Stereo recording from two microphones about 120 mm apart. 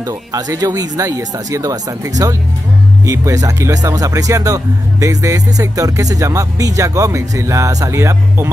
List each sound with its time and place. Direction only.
0.3 s speech: 30° right (ahead or behind)